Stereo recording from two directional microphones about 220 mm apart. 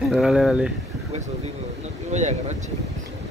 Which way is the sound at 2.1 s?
30° right (ahead or behind).